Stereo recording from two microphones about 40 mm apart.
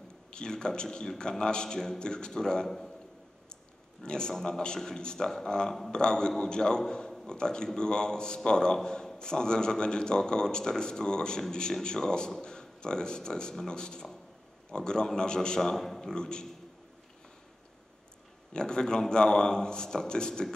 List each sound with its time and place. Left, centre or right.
0.3 s a man's voice: centre
4.0 s a man's voice: left
16.2 s a man's voice: left
18.5 s a man's voice: centre